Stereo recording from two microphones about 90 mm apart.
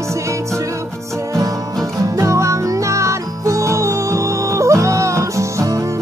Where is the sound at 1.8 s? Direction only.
40° right (ahead or behind).